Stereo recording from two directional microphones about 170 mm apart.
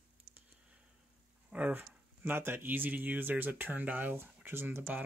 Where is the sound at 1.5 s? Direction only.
10° right (ahead or behind).